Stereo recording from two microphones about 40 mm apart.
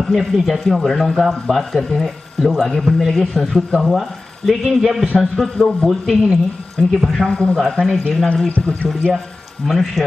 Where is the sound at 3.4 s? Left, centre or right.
Centre.